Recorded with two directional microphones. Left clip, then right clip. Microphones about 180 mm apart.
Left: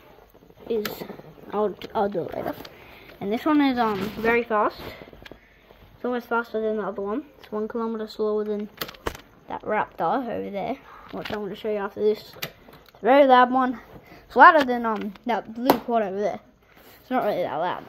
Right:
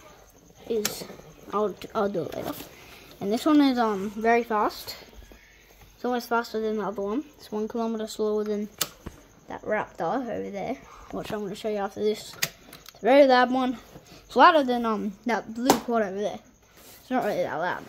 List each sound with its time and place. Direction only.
1.0 s speech: 5° right (ahead or behind)
6.0 s speech: 15° right (ahead or behind)
9.5 s speech: 5° left (ahead or behind)
11.1 s speech: 15° right (ahead or behind)